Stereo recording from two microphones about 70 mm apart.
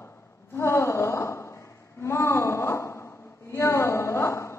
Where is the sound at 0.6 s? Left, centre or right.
Left.